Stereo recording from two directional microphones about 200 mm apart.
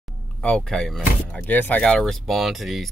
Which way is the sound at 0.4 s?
5° left (ahead or behind).